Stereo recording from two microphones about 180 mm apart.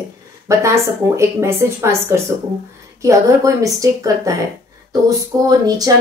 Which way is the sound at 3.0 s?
20° right (ahead or behind).